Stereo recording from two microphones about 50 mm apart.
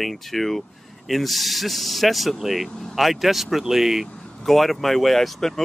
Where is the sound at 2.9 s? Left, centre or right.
Centre.